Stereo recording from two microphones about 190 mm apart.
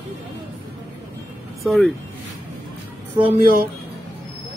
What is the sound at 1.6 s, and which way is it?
Speech, centre (ahead or behind).